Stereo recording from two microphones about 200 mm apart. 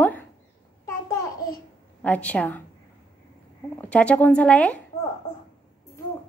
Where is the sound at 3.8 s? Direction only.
5° left (ahead or behind).